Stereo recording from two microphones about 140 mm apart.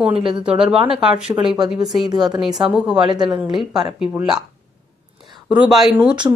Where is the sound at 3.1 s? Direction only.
30° right (ahead or behind).